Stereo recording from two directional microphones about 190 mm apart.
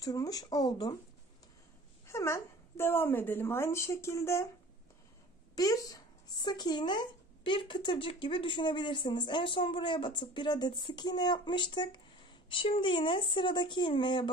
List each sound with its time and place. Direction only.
0.0 s speech: 20° left (ahead or behind)
2.0 s a woman's voice: 15° left (ahead or behind)
5.6 s speech: 20° left (ahead or behind)